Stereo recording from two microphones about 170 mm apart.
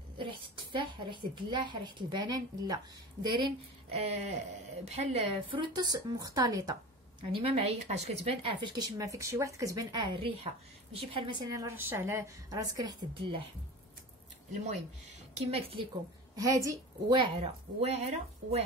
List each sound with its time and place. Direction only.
0.2 s a woman's voice: 30° right (ahead or behind)
3.4 s a woman's voice: 35° right (ahead or behind)
7.4 s speech: 35° right (ahead or behind)
11.5 s a woman's voice: 15° right (ahead or behind)
14.5 s speech: 40° right (ahead or behind)
16.3 s speech: 20° right (ahead or behind); by 18.6 s 40° right (ahead or behind)